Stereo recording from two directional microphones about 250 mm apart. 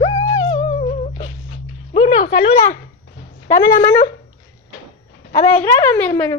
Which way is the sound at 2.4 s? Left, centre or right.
Centre.